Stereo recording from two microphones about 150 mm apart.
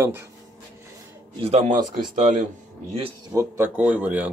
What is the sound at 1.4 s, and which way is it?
Speech, 45° right (ahead or behind).